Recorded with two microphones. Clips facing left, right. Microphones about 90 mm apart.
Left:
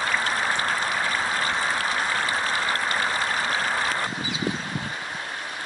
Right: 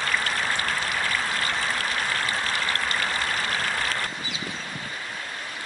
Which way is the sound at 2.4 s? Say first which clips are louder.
Left 2 dB; 15° left (ahead or behind).